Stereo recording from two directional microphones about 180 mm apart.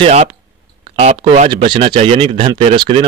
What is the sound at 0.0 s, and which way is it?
Speech, 40° right (ahead or behind).